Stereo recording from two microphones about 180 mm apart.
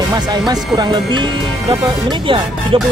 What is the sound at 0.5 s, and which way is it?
Speech, 25° right (ahead or behind).